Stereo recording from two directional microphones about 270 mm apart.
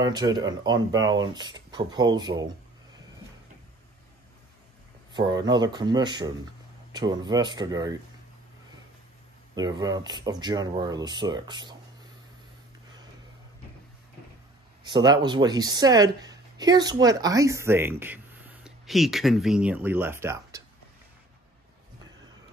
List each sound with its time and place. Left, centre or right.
0.0 s speech: centre
5.1 s speech: centre
9.6 s speech: centre
14.8 s speech: centre